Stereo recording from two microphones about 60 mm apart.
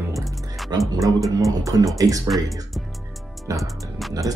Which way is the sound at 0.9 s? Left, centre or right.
Right.